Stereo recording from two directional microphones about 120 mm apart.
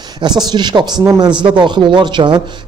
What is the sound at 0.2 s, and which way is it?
Speech, 35° right (ahead or behind).